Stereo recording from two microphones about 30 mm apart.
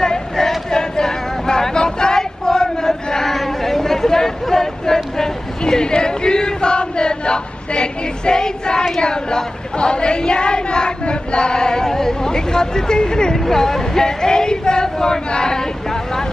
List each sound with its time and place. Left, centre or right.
0.0 s choir: left
0.7 s female singing: centre
2.9 s choir: centre
9.0 s a sound: left